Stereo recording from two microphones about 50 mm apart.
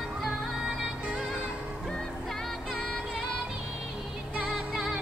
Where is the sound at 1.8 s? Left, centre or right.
Centre.